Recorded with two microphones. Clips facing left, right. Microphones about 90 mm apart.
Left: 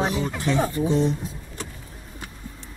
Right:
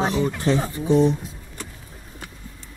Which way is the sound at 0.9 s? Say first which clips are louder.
Right 8 dB; 15° right (ahead or behind).